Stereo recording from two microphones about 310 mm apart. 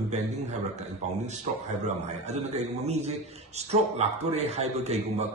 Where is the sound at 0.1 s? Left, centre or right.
Right.